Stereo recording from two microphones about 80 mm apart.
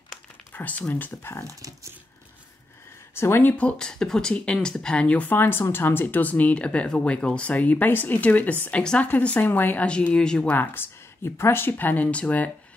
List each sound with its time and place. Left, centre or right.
0.5 s speech: left
1.5 s speech: right
3.2 s speech: left
3.5 s speech: centre
9.8 s speech: centre